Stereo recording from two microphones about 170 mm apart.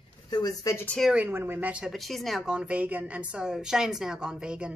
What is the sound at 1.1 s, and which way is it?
Speech, 10° right (ahead or behind).